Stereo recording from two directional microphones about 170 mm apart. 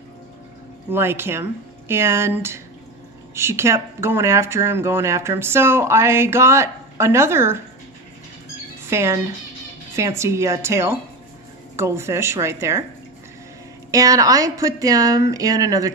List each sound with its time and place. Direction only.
0.8 s speech: 15° right (ahead or behind)
8.9 s speech: 15° right (ahead or behind)
13.9 s speech: 20° right (ahead or behind)